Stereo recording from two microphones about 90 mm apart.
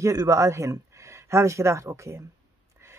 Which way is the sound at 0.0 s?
40° right (ahead or behind).